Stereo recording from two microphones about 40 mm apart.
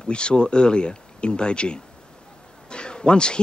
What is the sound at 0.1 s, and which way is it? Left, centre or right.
Speech, left.